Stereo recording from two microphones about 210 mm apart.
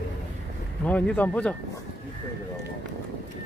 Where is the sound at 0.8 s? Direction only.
5° left (ahead or behind).